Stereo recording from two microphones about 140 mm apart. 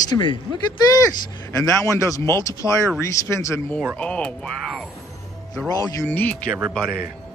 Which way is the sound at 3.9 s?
10° left (ahead or behind).